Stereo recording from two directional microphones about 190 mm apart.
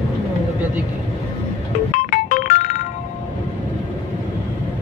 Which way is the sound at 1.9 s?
45° left (ahead or behind).